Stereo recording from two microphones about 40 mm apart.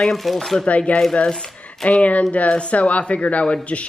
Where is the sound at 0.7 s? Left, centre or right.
Left.